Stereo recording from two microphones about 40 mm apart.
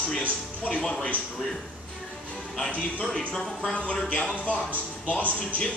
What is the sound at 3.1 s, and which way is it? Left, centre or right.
Speech, centre.